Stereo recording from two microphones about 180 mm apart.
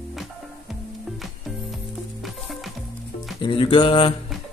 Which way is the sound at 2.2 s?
Centre (ahead or behind).